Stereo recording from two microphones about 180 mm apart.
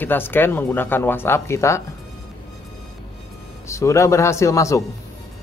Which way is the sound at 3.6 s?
15° left (ahead or behind).